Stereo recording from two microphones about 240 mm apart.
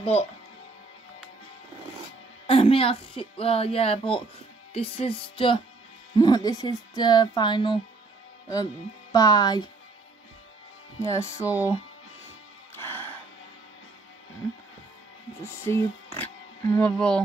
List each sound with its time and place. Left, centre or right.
0.0 s speech: left
2.4 s a woman's voice: left
9.1 s speech: centre
11.0 s speech: centre
11.4 s speech: centre
15.4 s speech: centre